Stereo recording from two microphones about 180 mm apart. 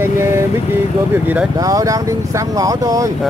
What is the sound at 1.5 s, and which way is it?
Speech, 20° right (ahead or behind).